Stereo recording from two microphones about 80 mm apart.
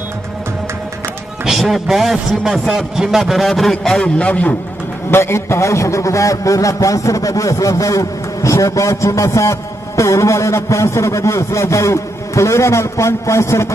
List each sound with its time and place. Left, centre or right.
1.4 s a man's voice: centre
5.1 s a man's voice: left